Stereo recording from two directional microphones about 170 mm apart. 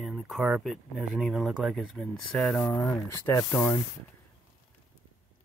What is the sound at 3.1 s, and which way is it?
Speech, 15° left (ahead or behind).